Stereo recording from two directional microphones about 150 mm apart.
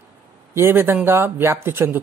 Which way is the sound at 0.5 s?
15° right (ahead or behind).